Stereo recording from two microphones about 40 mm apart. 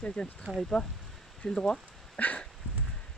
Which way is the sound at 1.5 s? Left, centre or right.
Centre.